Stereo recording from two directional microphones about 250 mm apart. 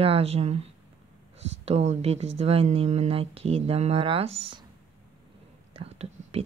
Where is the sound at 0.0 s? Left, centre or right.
Right.